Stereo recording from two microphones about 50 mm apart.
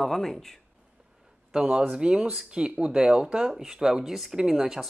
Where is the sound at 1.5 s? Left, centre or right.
Centre.